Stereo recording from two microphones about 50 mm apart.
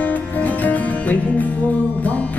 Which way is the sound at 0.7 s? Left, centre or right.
Left.